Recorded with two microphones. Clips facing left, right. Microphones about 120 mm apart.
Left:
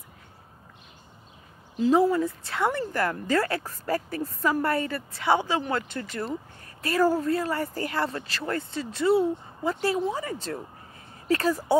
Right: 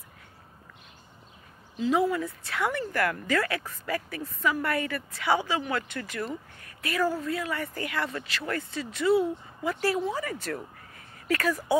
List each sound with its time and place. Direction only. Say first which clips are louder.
1.8 s speech: left 4 dB; 35° left (ahead or behind)